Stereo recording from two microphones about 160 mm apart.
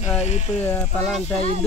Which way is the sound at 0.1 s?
45° left (ahead or behind).